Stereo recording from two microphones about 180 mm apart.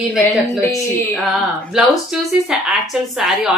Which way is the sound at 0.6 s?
15° left (ahead or behind).